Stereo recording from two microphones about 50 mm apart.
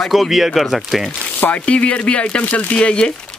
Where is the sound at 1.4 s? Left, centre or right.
Left.